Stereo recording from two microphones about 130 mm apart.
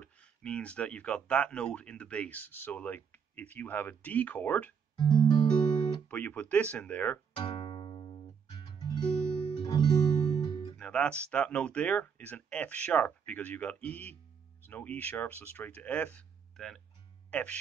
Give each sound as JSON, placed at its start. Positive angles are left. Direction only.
{"t": 0.0, "sound": "speech", "side_deg": 10}
{"t": 4.9, "sound": "guitar", "side_deg": 35}
{"t": 6.0, "sound": "speech", "side_deg": 10}
{"t": 7.3, "sound": "music", "side_deg": 40}
{"t": 9.6, "sound": "guitar", "side_deg": 35}
{"t": 10.8, "sound": "speech", "side_deg": 10}